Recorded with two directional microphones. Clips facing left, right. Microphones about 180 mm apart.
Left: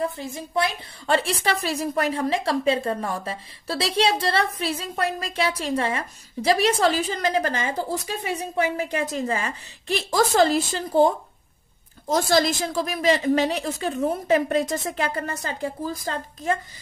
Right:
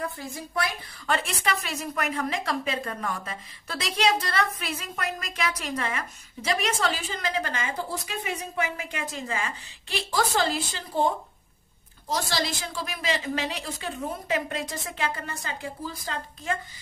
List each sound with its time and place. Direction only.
0.0 s a woman's voice: 25° left (ahead or behind); by 10.8 s 45° left (ahead or behind)
12.1 s a woman's voice: 50° left (ahead or behind)